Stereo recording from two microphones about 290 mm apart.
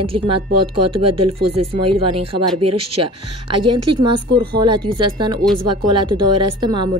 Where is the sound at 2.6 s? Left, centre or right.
Right.